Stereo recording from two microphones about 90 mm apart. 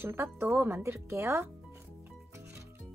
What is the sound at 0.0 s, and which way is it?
Speech, 25° right (ahead or behind).